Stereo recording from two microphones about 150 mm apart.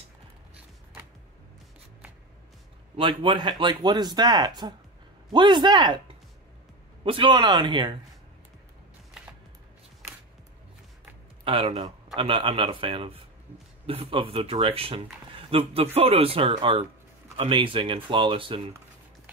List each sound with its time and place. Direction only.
3.0 s speech: 35° right (ahead or behind)
11.4 s speech: 40° right (ahead or behind)